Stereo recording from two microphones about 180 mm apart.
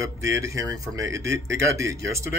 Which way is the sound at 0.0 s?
15° right (ahead or behind).